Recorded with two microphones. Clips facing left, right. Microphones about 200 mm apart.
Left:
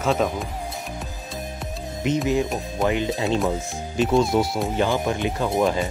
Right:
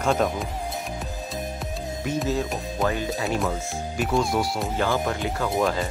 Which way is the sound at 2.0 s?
20° left (ahead or behind).